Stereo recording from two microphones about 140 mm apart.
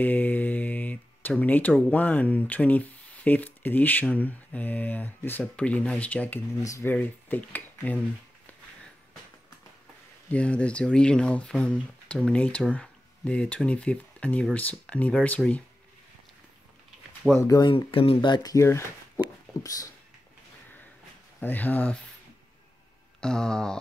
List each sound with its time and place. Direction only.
0.0 s speech: 10° left (ahead or behind)
10.3 s speech: 10° left (ahead or behind)
17.4 s speech: 30° left (ahead or behind)
21.4 s speech: 10° left (ahead or behind)
23.2 s a sound: 5° left (ahead or behind)